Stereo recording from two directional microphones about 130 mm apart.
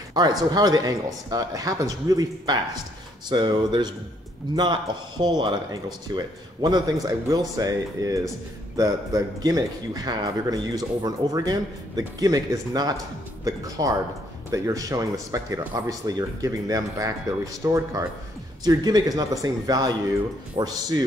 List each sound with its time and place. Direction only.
0.1 s speech: 30° right (ahead or behind)